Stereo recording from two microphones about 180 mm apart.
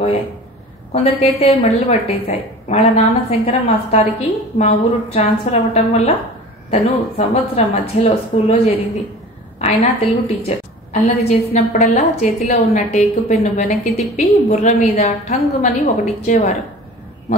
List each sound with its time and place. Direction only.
1.4 s a woman's voice: 35° left (ahead or behind)